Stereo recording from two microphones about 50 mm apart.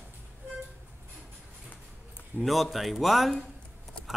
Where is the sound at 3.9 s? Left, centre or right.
Left.